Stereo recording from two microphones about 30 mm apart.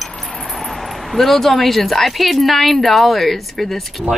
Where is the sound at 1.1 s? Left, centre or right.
Centre.